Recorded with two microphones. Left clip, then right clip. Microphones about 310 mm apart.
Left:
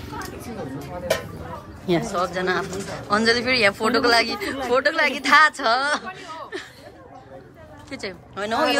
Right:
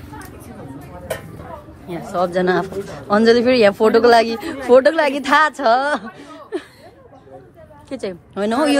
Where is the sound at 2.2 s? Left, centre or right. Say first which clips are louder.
Right 6 dB; centre.